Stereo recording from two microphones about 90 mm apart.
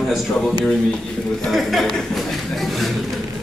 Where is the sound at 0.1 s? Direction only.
Centre (ahead or behind).